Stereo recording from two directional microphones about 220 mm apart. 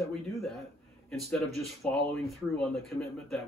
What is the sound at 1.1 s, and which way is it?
A man's voice, centre (ahead or behind).